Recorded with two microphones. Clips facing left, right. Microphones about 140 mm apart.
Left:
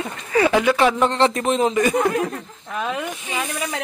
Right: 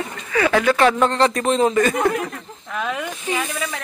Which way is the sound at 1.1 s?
25° left (ahead or behind).